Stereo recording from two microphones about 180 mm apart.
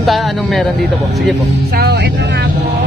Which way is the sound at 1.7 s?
60° right (ahead or behind).